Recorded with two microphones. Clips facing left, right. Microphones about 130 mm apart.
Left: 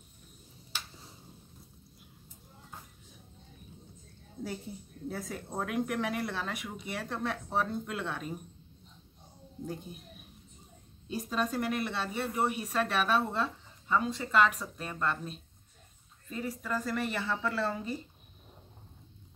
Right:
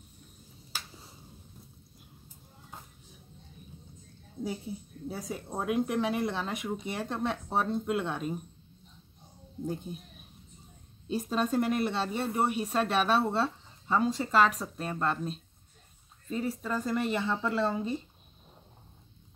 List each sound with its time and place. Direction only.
5.0 s speech: 20° right (ahead or behind)
11.1 s speech: 25° right (ahead or behind)